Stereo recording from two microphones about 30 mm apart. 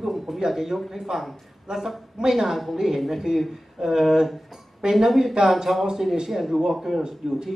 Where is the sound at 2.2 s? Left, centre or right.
Centre.